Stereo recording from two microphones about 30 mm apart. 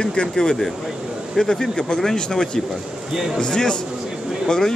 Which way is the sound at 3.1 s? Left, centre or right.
Centre.